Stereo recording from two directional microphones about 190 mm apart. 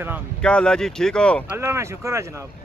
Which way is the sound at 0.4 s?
5° left (ahead or behind).